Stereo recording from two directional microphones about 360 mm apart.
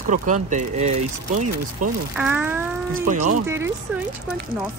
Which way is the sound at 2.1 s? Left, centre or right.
Centre.